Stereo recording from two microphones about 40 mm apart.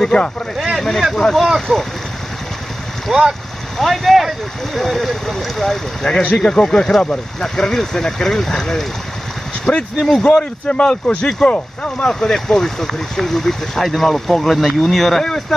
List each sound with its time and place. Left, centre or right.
0.1 s speech: left
0.7 s speech: centre
3.1 s speech: centre
3.7 s speech: centre; by 7.4 s left
7.4 s speech: centre
12.1 s speech: centre